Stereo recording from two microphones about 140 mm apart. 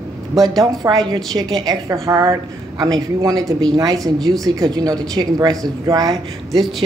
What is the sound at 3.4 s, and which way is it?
Speech, 5° left (ahead or behind).